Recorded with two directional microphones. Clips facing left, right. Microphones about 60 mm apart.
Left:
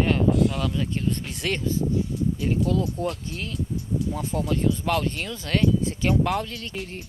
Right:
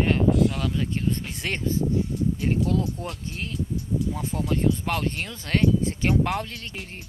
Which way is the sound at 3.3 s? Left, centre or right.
Right.